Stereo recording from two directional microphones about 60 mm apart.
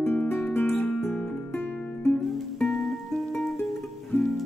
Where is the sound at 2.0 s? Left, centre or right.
Centre.